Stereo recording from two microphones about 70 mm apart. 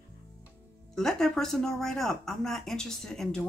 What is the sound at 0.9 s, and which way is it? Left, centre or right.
Speech, centre.